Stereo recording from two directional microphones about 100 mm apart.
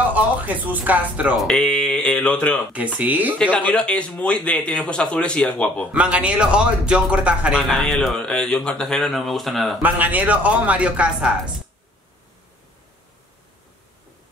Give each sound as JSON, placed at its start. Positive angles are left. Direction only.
{"t": 0.1, "sound": "speech", "side_deg": -15}
{"t": 1.4, "sound": "speech", "side_deg": 5}
{"t": 2.7, "sound": "speech", "side_deg": -15}
{"t": 3.3, "sound": "speech", "side_deg": 15}
{"t": 5.9, "sound": "speech", "side_deg": -10}
{"t": 7.6, "sound": "speech", "side_deg": 0}
{"t": 9.8, "sound": "speech", "side_deg": -15}